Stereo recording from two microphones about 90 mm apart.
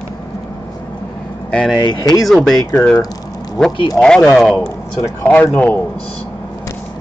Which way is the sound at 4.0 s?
10° left (ahead or behind).